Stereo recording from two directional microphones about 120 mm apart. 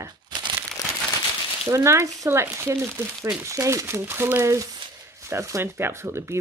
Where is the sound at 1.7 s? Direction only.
25° right (ahead or behind).